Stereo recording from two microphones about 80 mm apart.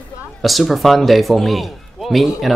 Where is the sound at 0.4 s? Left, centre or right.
Centre.